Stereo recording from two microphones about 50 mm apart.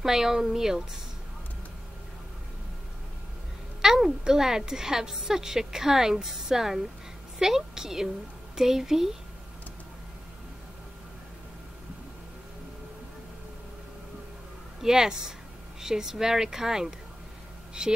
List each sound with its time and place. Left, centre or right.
0.0 s speech: centre
3.8 s speech: centre
14.8 s speech: centre